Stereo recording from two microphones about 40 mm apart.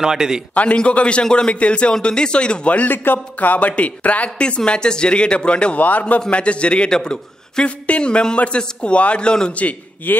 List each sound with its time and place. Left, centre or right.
0.0 s a man's voice: centre
0.7 s speech: left
1.5 s a man's voice: left
2.9 s a man's voice: left
3.3 s speech: left
5.9 s a man's voice: left
9.5 s a man's voice: left